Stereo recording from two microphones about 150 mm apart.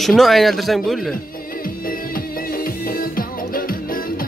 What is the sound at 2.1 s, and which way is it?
Music, 80° left.